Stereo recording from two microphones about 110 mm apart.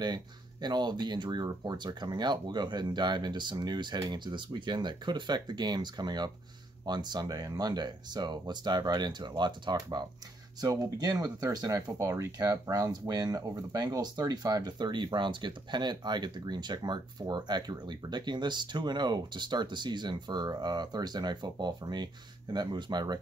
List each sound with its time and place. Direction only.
0.0 s speech: 40° right (ahead or behind)